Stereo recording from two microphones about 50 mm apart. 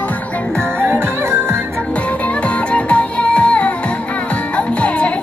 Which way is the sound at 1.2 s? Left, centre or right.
Right.